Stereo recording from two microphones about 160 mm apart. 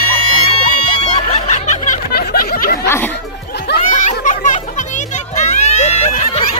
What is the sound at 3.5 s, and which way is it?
Music, 90° left.